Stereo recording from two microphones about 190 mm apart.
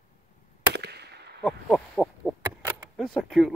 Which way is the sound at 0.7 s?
60° right (ahead or behind).